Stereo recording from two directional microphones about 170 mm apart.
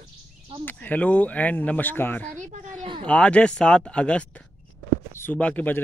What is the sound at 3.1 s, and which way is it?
Speech, 5° left (ahead or behind).